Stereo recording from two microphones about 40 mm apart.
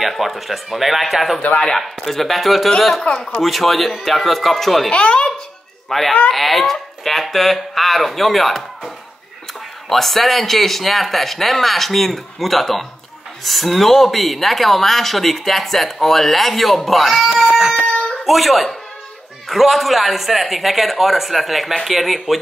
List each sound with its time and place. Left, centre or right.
0.0 s speech: centre
3.0 s a man's voice: left
3.4 s speech: centre
4.9 s a man's voice: left
5.9 s speech: centre